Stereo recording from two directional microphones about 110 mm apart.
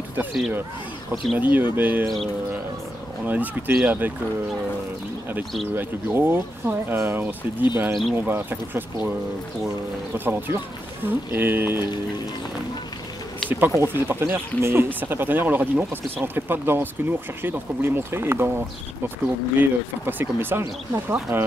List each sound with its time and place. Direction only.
1.1 s speech: centre (ahead or behind)
1.4 s speech: 15° right (ahead or behind)
3.3 s speech: 15° right (ahead or behind)
5.8 s speech: 20° right (ahead or behind)
7.9 s speech: centre (ahead or behind)
8.2 s speech: 15° right (ahead or behind)
10.1 s speech: 20° right (ahead or behind)
13.7 s speech: 20° right (ahead or behind)
19.6 s speech: 20° right (ahead or behind)